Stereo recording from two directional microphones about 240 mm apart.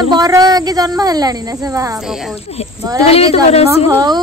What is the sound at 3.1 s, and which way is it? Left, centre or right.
Speech, left.